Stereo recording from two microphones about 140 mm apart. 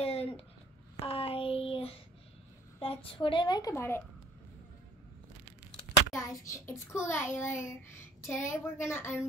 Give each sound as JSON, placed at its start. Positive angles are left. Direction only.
{"t": 0.0, "sound": "a sound", "side_deg": 45}
{"t": 2.8, "sound": "a woman's voice", "side_deg": 40}
{"t": 3.7, "sound": "a child's voice", "side_deg": 15}
{"t": 6.1, "sound": "a child's voice", "side_deg": 20}